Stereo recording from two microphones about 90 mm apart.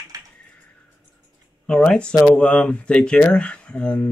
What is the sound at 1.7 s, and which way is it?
Speech, 10° left (ahead or behind).